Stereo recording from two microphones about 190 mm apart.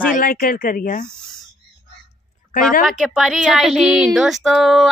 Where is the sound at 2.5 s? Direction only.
45° left (ahead or behind).